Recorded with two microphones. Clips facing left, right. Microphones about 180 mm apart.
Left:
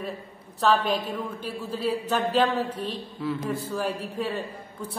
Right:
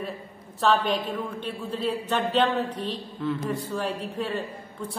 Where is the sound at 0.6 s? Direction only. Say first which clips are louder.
Even; centre (ahead or behind).